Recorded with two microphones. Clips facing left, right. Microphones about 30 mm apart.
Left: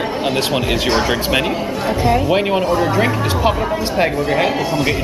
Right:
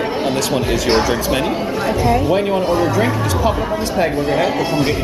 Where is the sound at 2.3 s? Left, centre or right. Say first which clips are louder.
Even; left.